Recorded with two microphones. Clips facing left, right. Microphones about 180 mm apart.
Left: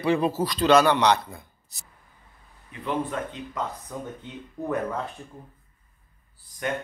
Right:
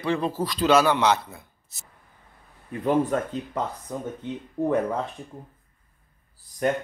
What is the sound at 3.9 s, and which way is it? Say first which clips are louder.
Speech: right 3 dB; 20° right (ahead or behind).